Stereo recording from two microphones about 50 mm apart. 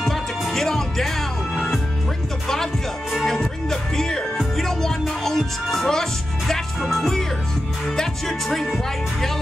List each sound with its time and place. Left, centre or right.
0.0 s music: centre